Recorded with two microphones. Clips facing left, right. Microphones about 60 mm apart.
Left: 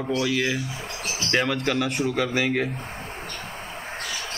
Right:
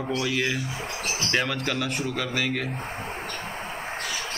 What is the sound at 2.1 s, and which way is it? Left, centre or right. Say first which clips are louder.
Speech: left 4 dB; centre.